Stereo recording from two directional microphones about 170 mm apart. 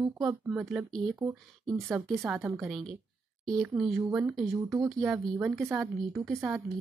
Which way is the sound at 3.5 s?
Centre (ahead or behind).